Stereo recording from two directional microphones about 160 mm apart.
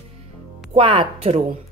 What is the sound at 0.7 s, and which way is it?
Speech, 35° right (ahead or behind).